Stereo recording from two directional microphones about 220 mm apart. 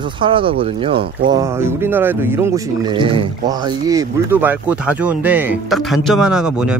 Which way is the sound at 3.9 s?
15° right (ahead or behind).